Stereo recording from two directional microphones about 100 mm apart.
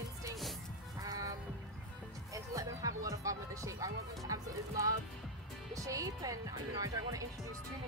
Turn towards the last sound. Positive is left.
turn(degrees=-35)  # may be behind; listen again after turning